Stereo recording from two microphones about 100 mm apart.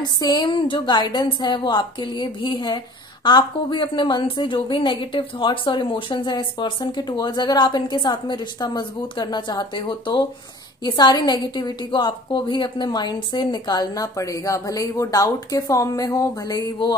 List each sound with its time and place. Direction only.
0.0 s a woman's voice: 45° left (ahead or behind)